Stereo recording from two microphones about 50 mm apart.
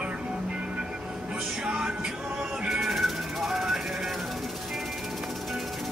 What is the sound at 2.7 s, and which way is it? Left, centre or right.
Music, centre.